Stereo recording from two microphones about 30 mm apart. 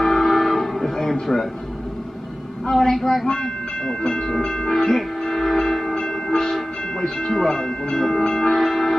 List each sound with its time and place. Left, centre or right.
0.0 s train: centre
1.2 s a sound: centre
2.7 s speech: centre
4.5 s train: left
7.0 s speech: centre